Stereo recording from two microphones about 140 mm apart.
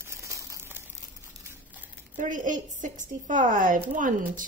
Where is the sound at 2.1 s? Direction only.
70° right (ahead or behind).